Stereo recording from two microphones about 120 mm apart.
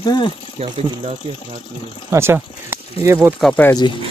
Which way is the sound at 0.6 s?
55° right (ahead or behind).